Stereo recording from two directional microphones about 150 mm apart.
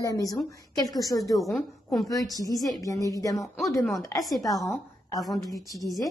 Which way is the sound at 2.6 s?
25° left (ahead or behind).